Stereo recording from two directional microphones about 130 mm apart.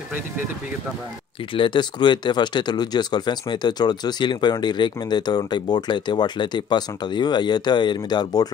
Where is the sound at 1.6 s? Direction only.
35° left (ahead or behind).